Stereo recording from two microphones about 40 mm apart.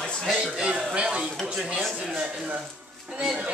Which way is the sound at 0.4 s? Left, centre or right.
Right.